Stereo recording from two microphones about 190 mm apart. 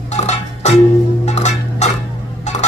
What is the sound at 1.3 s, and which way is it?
Music, 35° left (ahead or behind).